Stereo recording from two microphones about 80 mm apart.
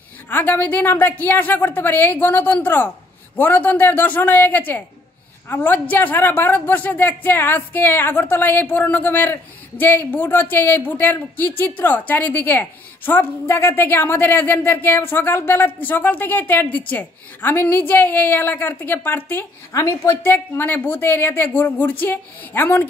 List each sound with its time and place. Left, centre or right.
0.3 s a woman's voice: left
19.7 s a woman's voice: left
20.2 s a woman's voice: left